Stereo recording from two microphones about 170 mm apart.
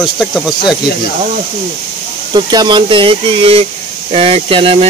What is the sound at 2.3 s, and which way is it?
Speech, 25° right (ahead or behind).